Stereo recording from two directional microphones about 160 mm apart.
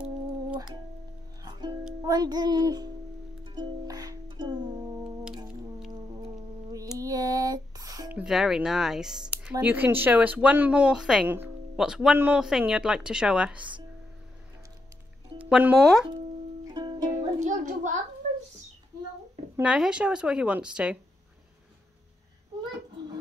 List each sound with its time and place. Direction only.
1.4 s music: 25° right (ahead or behind)
2.0 s speech: 25° right (ahead or behind)
3.4 s music: 25° right (ahead or behind)
7.0 s female singing: 20° right (ahead or behind)
8.1 s speech: 5° right (ahead or behind)
15.5 s speech: 5° right (ahead or behind)
16.6 s music: 25° right (ahead or behind)
17.1 s music: 50° right (ahead or behind)
19.6 s speech: 5° right (ahead or behind)